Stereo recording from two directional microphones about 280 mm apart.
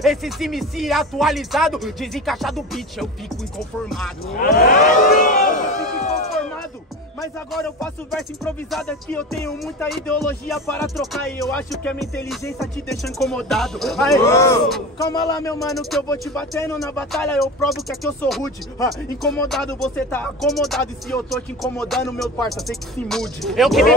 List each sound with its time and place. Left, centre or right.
0.0 s speech: centre
4.6 s a sound: left
7.5 s speech: centre
15.6 s speech: centre